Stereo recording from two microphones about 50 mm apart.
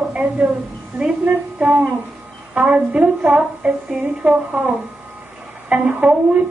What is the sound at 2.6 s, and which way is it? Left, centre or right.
A woman's voice, right.